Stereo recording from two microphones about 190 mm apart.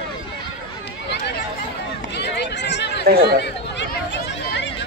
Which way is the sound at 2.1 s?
65° left (ahead or behind).